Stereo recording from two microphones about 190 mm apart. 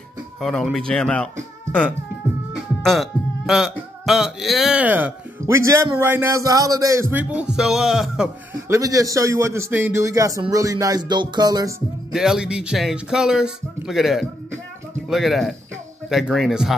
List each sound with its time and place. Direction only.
0.4 s speech: centre (ahead or behind)
2.8 s music: centre (ahead or behind)
8.6 s music: 15° right (ahead or behind)
12.1 s speech: 5° right (ahead or behind)